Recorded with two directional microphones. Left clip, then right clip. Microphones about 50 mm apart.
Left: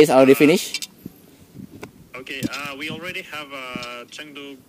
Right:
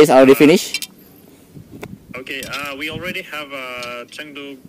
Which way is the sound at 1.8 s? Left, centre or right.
Centre.